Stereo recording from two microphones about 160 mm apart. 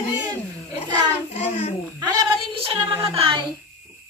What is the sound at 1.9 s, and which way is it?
Speech, 25° right (ahead or behind).